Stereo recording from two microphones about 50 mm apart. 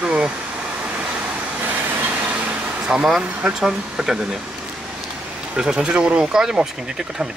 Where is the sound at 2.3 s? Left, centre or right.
Right.